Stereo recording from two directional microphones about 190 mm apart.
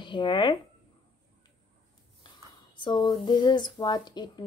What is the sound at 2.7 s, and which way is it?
A woman's voice, 25° left (ahead or behind).